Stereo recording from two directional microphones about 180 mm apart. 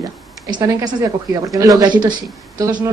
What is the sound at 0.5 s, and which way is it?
Speech, 20° right (ahead or behind).